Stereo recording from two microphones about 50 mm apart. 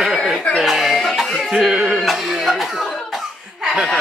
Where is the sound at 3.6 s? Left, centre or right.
Centre.